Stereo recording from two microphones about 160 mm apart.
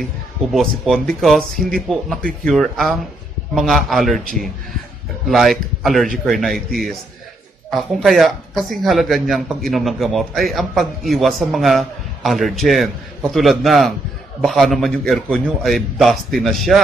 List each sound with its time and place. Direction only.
0.5 s speech: centre (ahead or behind)
5.3 s speech: centre (ahead or behind)